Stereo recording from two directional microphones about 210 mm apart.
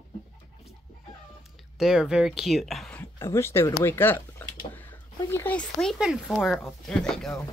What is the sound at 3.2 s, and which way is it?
Speech, 15° left (ahead or behind).